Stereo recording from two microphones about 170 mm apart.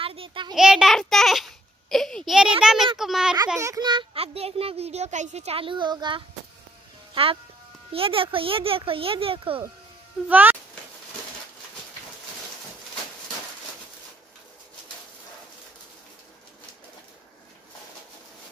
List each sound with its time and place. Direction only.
0.0 s a sound: 35° right (ahead or behind)
0.6 s a child's voice: 5° right (ahead or behind)
3.5 s a child's voice: 20° right (ahead or behind)
10.2 s speech: 10° right (ahead or behind)